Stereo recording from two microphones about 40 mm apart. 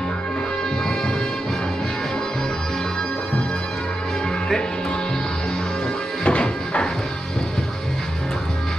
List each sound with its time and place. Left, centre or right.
6.2 s music: left